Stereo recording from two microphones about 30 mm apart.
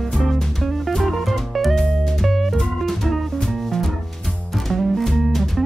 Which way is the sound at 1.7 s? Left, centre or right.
Centre.